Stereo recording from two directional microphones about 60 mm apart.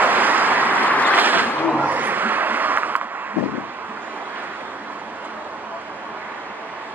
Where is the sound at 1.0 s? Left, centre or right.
Right.